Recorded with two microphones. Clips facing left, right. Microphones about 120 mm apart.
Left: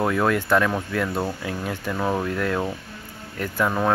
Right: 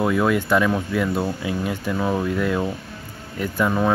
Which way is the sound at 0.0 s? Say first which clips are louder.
Right 2 dB; 5° right (ahead or behind).